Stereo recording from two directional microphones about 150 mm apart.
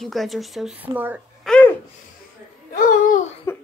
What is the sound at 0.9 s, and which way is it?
Speech, 10° right (ahead or behind).